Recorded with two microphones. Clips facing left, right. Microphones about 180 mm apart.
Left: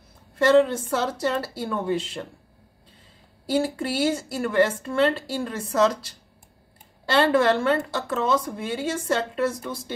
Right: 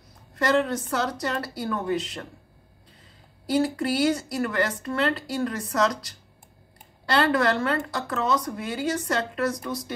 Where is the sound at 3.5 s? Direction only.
25° left (ahead or behind).